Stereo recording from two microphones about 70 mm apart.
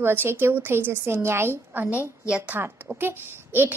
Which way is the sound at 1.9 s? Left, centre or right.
Centre.